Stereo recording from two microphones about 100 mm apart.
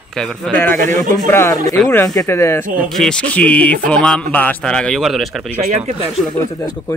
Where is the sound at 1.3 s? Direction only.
25° left (ahead or behind).